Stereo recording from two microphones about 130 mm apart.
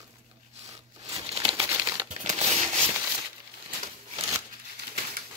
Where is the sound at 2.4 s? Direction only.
55° right (ahead or behind).